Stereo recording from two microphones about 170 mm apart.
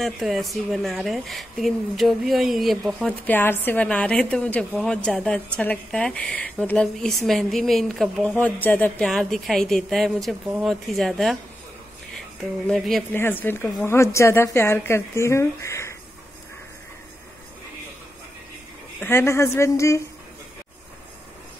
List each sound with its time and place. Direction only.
0.0 s a woman's voice: centre (ahead or behind)
12.6 s a woman's voice: centre (ahead or behind)
13.1 s a woman's voice: 10° left (ahead or behind)
18.9 s a woman's voice: 15° left (ahead or behind)